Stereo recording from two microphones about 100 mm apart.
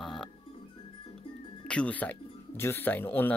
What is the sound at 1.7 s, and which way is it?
Speech, 15° left (ahead or behind).